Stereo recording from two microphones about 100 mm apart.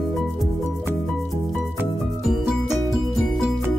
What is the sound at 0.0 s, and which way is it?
Music, centre (ahead or behind).